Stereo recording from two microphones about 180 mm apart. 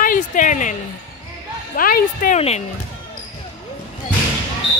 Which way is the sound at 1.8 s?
55° left (ahead or behind).